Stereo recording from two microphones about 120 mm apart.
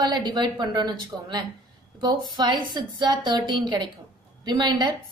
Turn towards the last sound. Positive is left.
turn(degrees=-40)  # may be behind; listen again after turning